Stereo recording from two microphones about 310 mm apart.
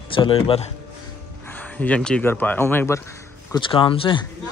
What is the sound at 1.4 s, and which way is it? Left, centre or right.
A man's voice, centre.